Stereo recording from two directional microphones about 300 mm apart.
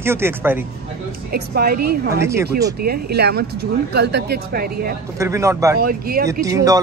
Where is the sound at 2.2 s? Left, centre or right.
Centre.